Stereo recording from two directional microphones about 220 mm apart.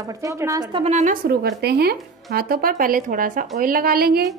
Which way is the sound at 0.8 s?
30° right (ahead or behind).